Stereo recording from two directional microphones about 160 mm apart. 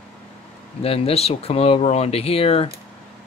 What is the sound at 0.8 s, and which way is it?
Speech, 35° left (ahead or behind).